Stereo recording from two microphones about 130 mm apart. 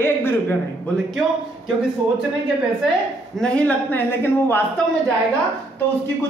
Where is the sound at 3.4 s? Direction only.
10° left (ahead or behind).